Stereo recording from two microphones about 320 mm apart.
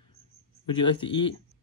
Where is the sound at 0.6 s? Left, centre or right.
Centre.